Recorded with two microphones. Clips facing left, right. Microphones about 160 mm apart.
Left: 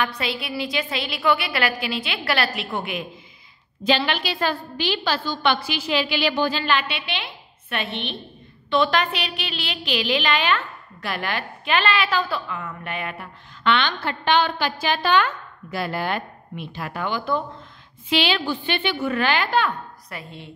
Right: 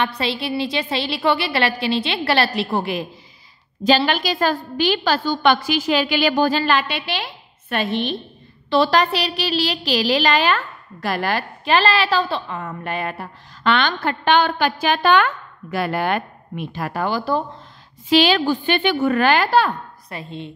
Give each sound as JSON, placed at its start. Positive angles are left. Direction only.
{"t": 0.2, "sound": "a woman's voice", "side_deg": -30}
{"t": 20.1, "sound": "a woman's voice", "side_deg": -25}